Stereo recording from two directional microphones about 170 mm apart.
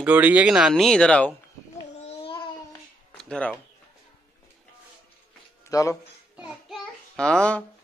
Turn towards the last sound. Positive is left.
turn(degrees=5)  # may be behind; listen again after turning